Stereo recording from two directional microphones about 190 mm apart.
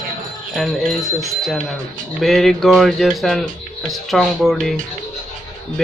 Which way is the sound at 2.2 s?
Centre (ahead or behind).